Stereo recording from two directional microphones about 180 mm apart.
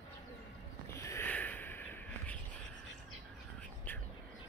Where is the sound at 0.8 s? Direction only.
15° left (ahead or behind).